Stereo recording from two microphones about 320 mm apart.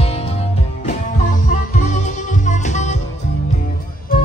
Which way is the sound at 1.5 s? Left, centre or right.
Left.